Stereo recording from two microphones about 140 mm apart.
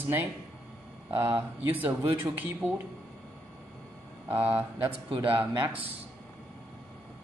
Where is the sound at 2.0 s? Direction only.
40° right (ahead or behind).